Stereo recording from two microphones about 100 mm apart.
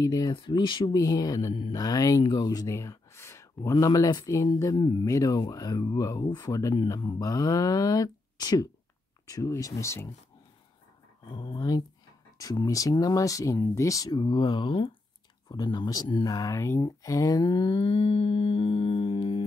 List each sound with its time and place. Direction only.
0.0 s speech: 35° left (ahead or behind)
0.3 s speech: 50° left (ahead or behind)
0.9 s speech: 35° left (ahead or behind)
4.7 s speech: 50° left (ahead or behind)
5.0 s speech: 35° left (ahead or behind)
11.2 s speech: 50° left (ahead or behind); by 14.1 s 35° left (ahead or behind)
14.1 s speech: 50° left (ahead or behind)
15.4 s speech: 45° left (ahead or behind); by 19.4 s 65° left (ahead or behind)